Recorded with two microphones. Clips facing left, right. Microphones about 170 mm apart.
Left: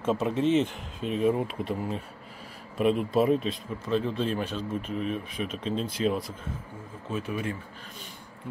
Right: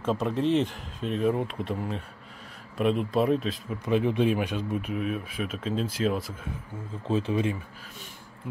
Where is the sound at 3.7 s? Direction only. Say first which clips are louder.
Right 4 dB; 15° right (ahead or behind).